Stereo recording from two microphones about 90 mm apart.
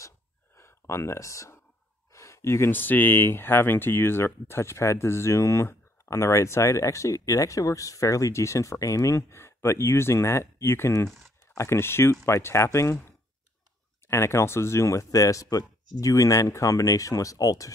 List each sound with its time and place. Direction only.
0.6 s speech: 30° left (ahead or behind)